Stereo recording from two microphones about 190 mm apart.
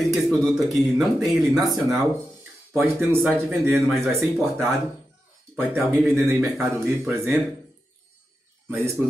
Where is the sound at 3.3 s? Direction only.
10° right (ahead or behind).